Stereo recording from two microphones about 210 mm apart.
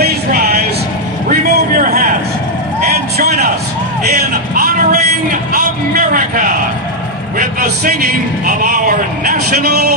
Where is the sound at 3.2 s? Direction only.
45° right (ahead or behind).